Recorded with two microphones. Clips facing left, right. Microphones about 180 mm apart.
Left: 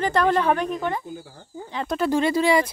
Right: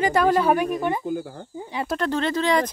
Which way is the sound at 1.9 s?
10° left (ahead or behind).